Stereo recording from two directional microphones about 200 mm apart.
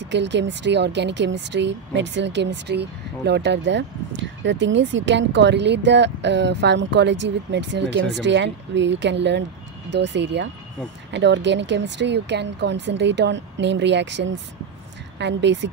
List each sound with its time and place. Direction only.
0.0 s speech: 60° right (ahead or behind)